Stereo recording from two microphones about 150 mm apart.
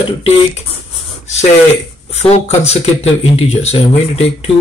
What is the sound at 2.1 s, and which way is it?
Speech, 45° left (ahead or behind).